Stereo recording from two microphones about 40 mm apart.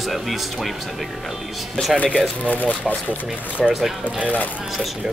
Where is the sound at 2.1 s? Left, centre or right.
Left.